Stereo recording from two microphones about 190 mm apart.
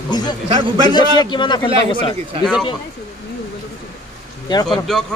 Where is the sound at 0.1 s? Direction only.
20° left (ahead or behind).